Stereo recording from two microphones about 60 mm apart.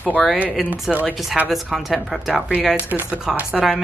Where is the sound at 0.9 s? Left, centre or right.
Centre.